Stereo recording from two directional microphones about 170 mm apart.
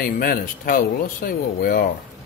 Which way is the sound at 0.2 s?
60° left (ahead or behind).